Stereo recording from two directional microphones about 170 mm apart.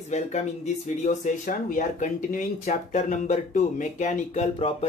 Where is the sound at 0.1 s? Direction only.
40° left (ahead or behind).